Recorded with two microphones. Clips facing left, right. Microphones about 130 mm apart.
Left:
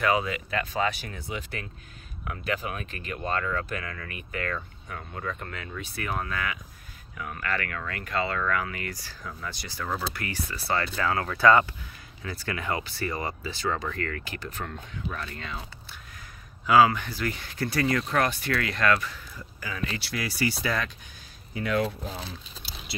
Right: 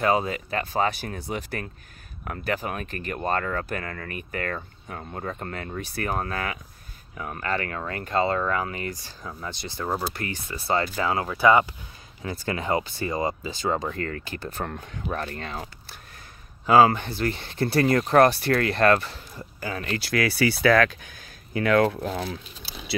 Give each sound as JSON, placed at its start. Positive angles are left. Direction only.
{"t": 0.0, "sound": "speech", "side_deg": -35}
{"t": 12.2, "sound": "speech", "side_deg": -25}
{"t": 14.7, "sound": "speech", "side_deg": -50}
{"t": 17.7, "sound": "speech", "side_deg": -40}
{"t": 19.7, "sound": "speech", "side_deg": -45}
{"t": 20.1, "sound": "speech", "side_deg": -80}